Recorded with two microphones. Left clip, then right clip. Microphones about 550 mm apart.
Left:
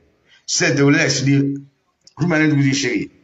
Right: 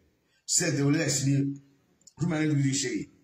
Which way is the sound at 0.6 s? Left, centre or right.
Right.